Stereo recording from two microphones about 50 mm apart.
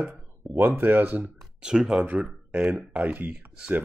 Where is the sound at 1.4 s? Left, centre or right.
Centre.